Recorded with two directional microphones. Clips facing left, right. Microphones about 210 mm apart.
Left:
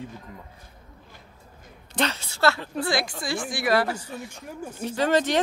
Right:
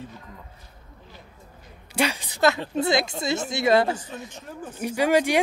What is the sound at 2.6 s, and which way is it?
Speech, 25° right (ahead or behind).